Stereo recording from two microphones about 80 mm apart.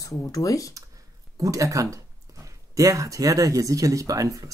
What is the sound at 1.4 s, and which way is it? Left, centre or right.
Speech, right.